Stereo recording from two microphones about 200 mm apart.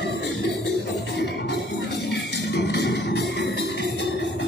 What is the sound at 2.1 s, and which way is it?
Music, 55° left (ahead or behind).